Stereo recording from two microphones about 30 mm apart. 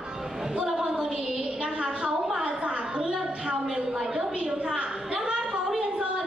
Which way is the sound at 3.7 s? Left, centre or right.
Centre.